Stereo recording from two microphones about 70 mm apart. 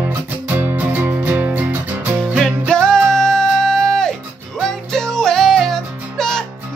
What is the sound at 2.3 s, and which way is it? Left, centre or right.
Music, centre.